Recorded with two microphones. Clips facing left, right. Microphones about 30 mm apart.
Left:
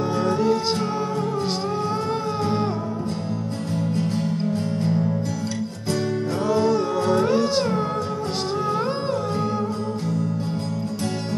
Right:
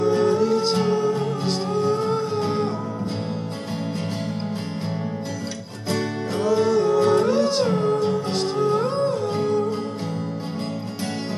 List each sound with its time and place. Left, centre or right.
0.3 s music: centre
5.9 s music: centre
6.4 s music: centre
7.0 s music: centre
7.2 s music: centre